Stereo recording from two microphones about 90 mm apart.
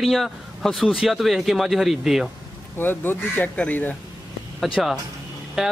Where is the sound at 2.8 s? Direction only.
25° left (ahead or behind).